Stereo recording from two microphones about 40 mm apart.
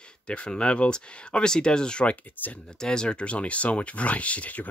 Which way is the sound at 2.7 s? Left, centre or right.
Centre.